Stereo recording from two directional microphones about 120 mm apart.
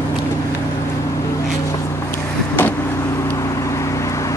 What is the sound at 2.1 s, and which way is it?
Vehicle, 15° left (ahead or behind).